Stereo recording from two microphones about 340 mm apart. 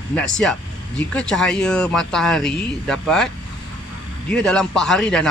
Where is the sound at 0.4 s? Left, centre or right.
Centre.